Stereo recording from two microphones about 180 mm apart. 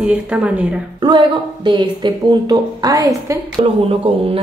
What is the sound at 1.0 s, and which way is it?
A woman's voice, 25° right (ahead or behind).